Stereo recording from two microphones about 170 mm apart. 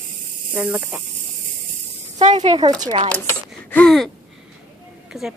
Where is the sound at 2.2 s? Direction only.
45° right (ahead or behind).